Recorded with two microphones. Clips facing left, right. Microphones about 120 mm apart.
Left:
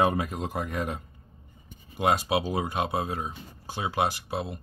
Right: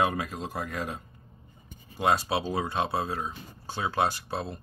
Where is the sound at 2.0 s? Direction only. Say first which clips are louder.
Left 1 dB; 15° left (ahead or behind).